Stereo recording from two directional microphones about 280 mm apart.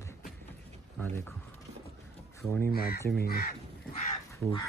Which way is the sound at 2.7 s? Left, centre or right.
Left.